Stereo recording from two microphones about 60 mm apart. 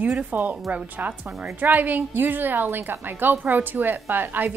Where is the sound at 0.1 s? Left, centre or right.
Right.